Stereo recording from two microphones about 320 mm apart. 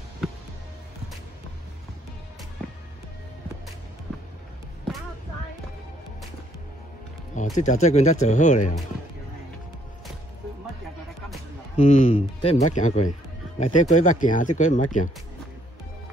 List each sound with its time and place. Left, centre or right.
7.5 s speech: left
11.7 s speech: left